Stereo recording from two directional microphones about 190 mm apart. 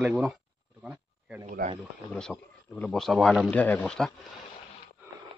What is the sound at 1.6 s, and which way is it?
Speech, 50° right (ahead or behind).